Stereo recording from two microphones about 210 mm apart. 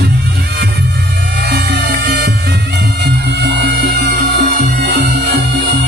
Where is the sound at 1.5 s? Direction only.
50° right (ahead or behind).